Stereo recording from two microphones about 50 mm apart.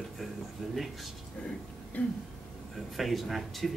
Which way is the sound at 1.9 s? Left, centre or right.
Left.